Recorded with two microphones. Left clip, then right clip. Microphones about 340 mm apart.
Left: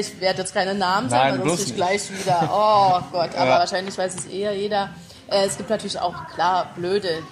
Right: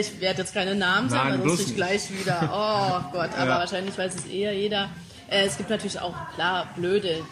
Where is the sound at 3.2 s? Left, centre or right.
Centre.